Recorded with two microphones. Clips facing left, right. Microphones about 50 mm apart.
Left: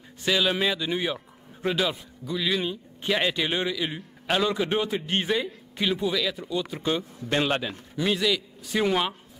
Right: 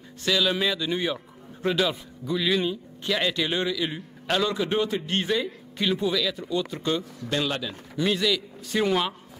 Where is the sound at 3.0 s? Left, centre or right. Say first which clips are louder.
Left 1 dB; centre.